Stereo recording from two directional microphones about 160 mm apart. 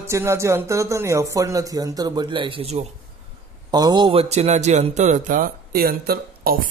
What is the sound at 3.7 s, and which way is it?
Speech, 25° right (ahead or behind).